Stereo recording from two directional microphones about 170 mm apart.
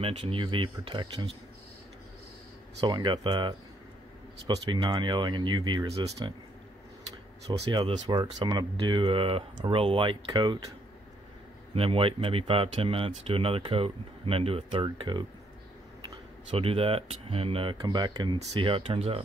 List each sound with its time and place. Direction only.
0.0 s speech: 35° right (ahead or behind)
2.8 s speech: 30° right (ahead or behind)
7.7 s speech: 30° right (ahead or behind)
11.7 s speech: 35° right (ahead or behind)
16.4 s speech: 35° right (ahead or behind)